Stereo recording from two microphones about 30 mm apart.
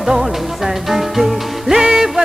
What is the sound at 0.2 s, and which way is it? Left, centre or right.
Music, centre.